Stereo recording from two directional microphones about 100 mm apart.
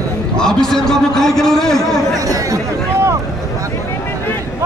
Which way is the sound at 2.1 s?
35° right (ahead or behind).